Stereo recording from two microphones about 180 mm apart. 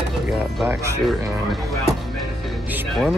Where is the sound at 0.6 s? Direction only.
15° right (ahead or behind).